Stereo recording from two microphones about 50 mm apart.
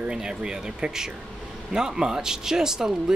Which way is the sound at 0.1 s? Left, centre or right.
Centre.